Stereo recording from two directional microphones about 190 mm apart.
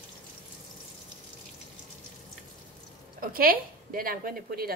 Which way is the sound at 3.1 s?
50° right (ahead or behind).